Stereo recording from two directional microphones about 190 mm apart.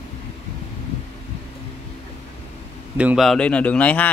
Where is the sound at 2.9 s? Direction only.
5° right (ahead or behind).